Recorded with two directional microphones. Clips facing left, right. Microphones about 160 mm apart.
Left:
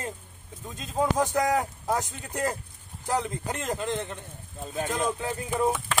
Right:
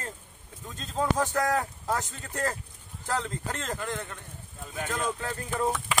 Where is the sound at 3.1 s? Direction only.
15° left (ahead or behind).